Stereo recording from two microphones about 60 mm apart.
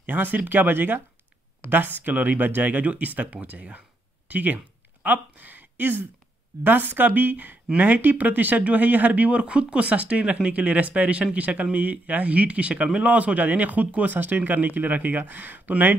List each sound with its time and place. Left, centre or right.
0.0 s speech: right